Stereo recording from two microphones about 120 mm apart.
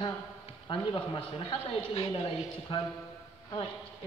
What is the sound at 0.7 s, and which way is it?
A woman's voice, 45° left (ahead or behind).